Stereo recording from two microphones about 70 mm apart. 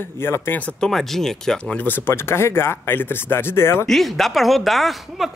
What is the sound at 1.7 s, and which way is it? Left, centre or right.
Speech, left.